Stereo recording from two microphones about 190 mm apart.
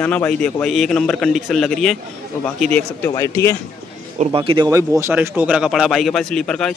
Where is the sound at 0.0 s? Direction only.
5° left (ahead or behind).